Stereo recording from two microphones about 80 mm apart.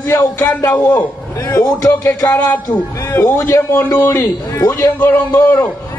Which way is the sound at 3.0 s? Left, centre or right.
Left.